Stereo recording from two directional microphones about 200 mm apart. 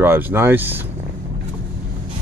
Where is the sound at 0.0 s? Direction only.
10° right (ahead or behind).